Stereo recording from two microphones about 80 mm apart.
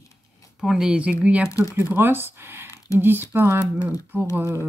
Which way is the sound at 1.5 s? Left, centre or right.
Left.